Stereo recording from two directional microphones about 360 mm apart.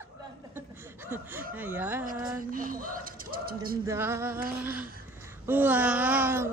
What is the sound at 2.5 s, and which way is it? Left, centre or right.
Bird, right.